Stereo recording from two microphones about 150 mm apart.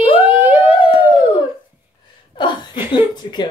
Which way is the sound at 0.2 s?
15° right (ahead or behind).